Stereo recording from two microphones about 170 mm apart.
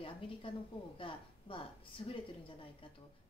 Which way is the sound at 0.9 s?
30° left (ahead or behind).